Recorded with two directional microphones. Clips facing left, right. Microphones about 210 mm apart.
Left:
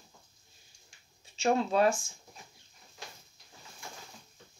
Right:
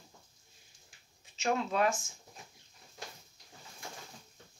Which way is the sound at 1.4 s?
35° left (ahead or behind).